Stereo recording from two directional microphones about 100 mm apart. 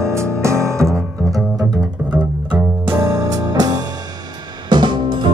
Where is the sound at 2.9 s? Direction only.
30° right (ahead or behind).